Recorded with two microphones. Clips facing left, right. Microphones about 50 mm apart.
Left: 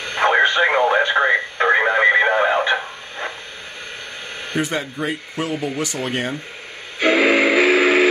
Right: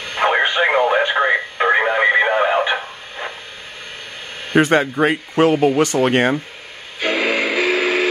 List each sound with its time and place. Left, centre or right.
0.0 s radio: centre
4.6 s speech: right
7.0 s music: centre